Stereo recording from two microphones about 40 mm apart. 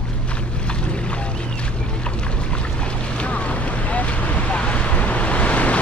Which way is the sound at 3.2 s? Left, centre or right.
Left.